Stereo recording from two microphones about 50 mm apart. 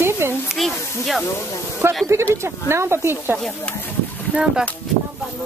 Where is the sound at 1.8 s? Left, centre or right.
Right.